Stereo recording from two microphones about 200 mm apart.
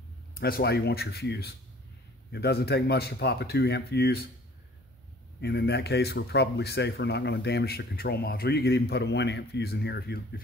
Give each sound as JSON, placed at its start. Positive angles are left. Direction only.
{"t": 0.4, "sound": "speech", "side_deg": 50}
{"t": 5.4, "sound": "speech", "side_deg": 55}